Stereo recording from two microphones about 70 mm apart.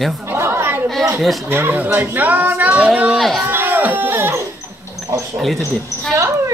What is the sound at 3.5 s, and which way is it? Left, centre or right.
Speech, right.